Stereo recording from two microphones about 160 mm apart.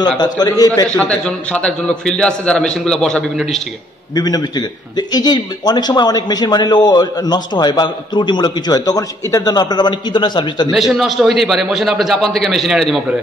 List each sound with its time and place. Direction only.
0.0 s a man's voice: 25° left (ahead or behind)
0.8 s a man's voice: 5° left (ahead or behind)
4.1 s a man's voice: 25° left (ahead or behind)
10.7 s a man's voice: centre (ahead or behind)